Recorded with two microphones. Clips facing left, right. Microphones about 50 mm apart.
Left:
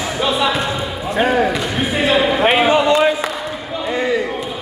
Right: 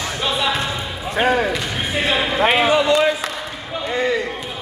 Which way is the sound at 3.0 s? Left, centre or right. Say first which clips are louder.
Left 3 dB; centre.